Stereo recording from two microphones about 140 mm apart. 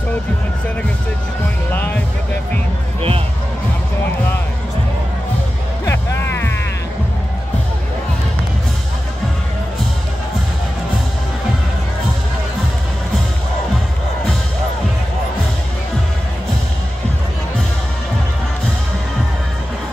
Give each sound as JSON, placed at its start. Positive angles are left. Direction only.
{"t": 1.7, "sound": "music", "side_deg": 15}
{"t": 5.9, "sound": "music", "side_deg": 15}